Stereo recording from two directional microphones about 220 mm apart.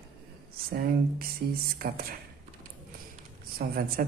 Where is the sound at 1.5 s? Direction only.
40° right (ahead or behind).